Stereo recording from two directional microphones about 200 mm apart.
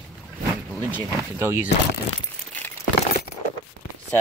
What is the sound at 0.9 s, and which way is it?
Speech, 10° right (ahead or behind).